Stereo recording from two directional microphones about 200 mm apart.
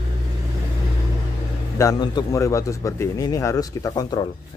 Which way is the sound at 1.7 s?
15° left (ahead or behind).